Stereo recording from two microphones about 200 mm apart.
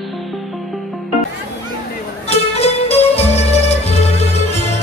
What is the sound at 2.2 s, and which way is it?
Music, 30° left (ahead or behind).